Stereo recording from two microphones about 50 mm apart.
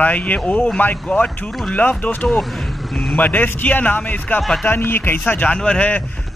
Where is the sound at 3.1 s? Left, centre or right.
Left.